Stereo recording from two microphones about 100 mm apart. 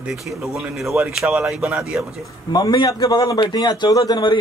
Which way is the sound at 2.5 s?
45° left (ahead or behind).